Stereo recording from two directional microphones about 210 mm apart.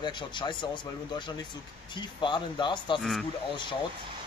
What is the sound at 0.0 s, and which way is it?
Speech, 20° left (ahead or behind).